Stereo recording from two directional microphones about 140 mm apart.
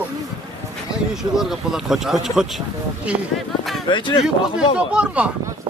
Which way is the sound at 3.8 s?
35° left (ahead or behind).